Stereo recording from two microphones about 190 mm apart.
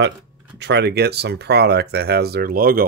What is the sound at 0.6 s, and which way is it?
Speech, 65° right (ahead or behind).